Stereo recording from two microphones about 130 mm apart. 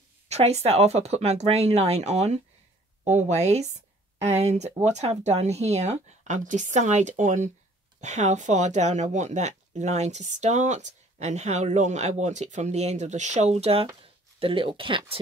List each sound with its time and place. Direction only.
0.3 s a woman's voice: 55° right (ahead or behind)